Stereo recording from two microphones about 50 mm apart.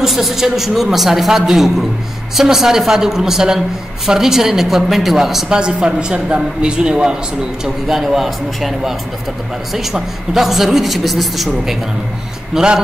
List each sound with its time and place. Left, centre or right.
0.0 s a man's voice: centre
5.6 s a man's voice: centre
7.6 s a man's voice: centre
12.5 s a man's voice: centre